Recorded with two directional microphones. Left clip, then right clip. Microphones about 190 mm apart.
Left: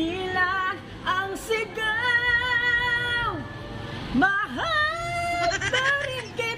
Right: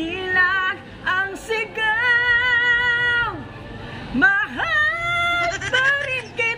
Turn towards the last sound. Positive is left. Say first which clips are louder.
# right 6 dB
turn(degrees=0)  # may be behind; listen again after turning